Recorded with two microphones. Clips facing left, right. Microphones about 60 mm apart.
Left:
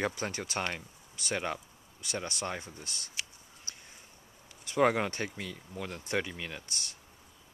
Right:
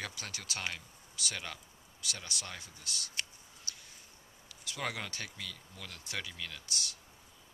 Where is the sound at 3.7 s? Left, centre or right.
Left.